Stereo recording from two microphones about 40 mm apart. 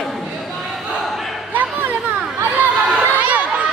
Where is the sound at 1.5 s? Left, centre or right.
Right.